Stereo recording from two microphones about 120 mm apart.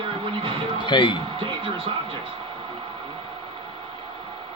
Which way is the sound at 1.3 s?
45° right (ahead or behind).